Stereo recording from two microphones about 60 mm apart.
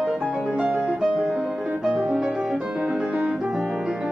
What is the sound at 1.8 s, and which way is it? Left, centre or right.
Music, centre.